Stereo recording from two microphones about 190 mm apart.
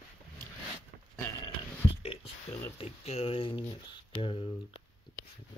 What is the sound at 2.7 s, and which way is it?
Speech, 30° left (ahead or behind).